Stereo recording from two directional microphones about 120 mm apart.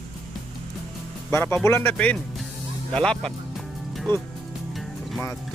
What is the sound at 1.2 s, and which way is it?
Speech, 20° left (ahead or behind).